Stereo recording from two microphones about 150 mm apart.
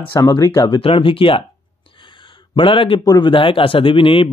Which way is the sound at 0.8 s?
35° left (ahead or behind).